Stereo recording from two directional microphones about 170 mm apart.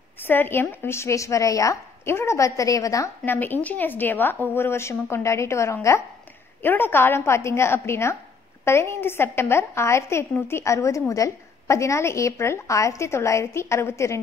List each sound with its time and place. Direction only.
0.2 s a woman's voice: 10° left (ahead or behind)